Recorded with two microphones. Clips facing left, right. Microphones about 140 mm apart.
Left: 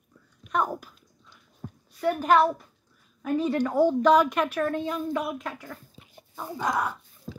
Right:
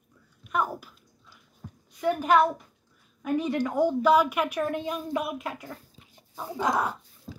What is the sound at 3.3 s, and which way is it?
Speech, 15° right (ahead or behind).